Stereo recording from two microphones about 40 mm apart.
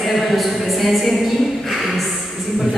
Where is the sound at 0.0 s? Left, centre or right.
Centre.